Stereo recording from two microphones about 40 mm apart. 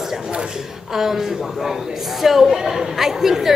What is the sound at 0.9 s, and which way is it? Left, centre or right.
Speech, centre.